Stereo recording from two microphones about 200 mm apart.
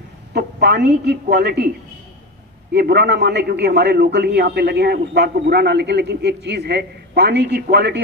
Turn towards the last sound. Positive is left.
turn(degrees=-55)  # may be behind; listen again after turning